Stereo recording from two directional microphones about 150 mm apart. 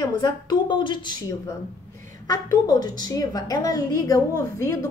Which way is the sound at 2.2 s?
25° left (ahead or behind).